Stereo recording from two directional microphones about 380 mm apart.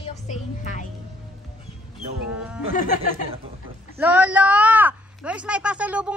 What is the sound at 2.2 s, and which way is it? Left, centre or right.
Speech, centre.